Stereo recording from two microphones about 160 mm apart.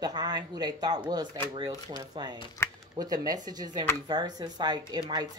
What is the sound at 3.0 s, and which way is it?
Speech, 25° right (ahead or behind).